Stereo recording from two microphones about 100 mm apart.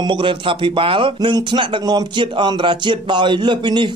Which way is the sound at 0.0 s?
55° right (ahead or behind).